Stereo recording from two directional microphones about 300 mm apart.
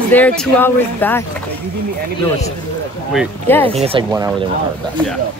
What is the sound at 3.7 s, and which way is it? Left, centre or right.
Speech, centre.